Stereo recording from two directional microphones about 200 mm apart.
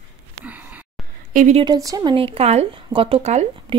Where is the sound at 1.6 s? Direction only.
20° right (ahead or behind).